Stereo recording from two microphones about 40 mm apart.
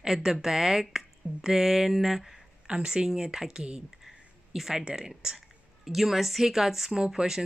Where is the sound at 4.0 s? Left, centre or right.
Centre.